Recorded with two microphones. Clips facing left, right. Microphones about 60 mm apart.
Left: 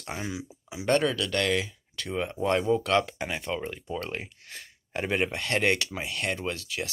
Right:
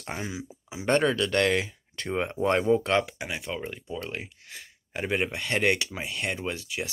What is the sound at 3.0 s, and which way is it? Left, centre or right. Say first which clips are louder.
Speech: left 1 dB; centre.